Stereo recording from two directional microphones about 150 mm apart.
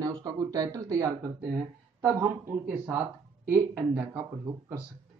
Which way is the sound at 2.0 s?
15° right (ahead or behind).